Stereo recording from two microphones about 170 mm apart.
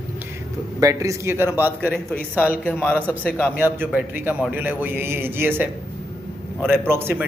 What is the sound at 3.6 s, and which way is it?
A man's voice, 10° right (ahead or behind).